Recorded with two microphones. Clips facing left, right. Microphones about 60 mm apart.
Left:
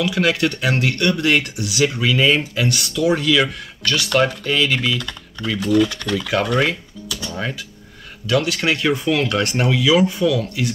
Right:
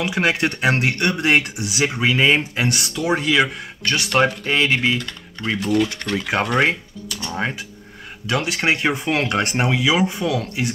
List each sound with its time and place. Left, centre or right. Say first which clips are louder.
0.0 s speech: left 1 dB; right
10.2 s speech: left 3 dB; right